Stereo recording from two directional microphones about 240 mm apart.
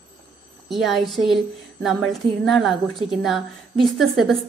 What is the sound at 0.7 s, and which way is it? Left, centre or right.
A woman's voice, centre.